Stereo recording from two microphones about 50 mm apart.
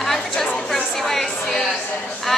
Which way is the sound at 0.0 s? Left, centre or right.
Centre.